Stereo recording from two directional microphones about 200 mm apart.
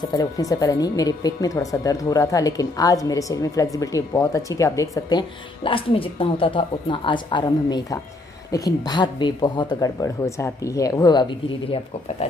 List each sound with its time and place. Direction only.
0.0 s a woman's voice: 20° left (ahead or behind)